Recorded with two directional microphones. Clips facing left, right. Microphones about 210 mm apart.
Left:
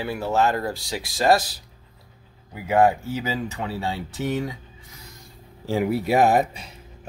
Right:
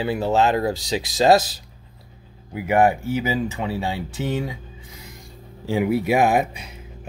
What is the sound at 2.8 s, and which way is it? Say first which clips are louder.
Speech: right 2 dB; 15° right (ahead or behind).